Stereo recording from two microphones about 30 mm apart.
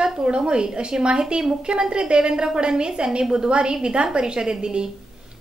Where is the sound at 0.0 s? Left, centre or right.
Right.